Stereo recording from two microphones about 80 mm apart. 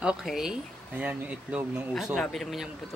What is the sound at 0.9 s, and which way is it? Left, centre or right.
Speech, centre.